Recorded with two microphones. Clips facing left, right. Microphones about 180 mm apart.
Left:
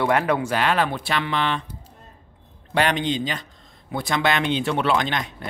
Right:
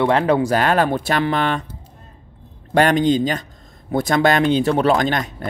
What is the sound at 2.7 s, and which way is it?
Speech, 45° right (ahead or behind).